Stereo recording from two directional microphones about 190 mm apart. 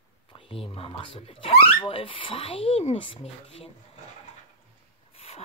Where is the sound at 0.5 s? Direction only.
30° left (ahead or behind).